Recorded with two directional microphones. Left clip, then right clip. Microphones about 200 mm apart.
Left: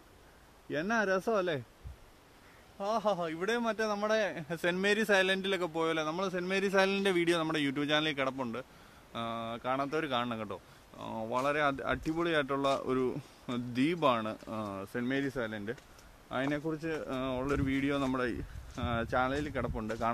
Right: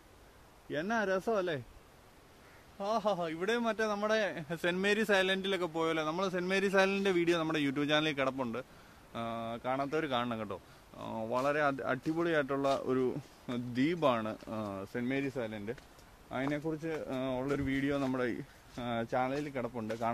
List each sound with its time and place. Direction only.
0.7 s speech: 35° left (ahead or behind)
2.8 s a man's voice: 15° left (ahead or behind)